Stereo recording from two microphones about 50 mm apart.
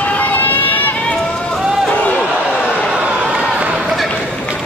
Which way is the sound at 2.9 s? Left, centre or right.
Centre.